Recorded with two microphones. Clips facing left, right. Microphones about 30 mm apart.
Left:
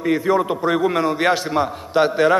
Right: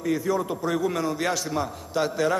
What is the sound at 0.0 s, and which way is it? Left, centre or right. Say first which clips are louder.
A man's voice: left 7 dB; left.